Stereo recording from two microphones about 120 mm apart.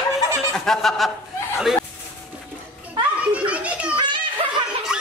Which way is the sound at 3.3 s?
10° right (ahead or behind).